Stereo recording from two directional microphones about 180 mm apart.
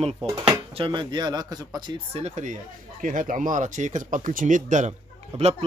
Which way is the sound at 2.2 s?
40° right (ahead or behind).